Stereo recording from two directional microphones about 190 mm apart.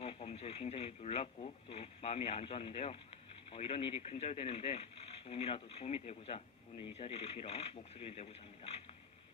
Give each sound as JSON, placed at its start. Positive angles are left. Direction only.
{"t": 0.0, "sound": "speech", "side_deg": 30}